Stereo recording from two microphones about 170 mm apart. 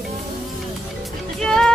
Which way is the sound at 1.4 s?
5° left (ahead or behind).